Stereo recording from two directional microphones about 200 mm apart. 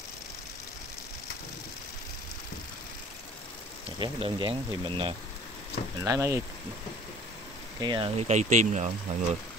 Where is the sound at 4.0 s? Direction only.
25° right (ahead or behind).